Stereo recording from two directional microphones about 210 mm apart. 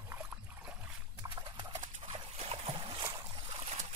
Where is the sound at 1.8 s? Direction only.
35° right (ahead or behind).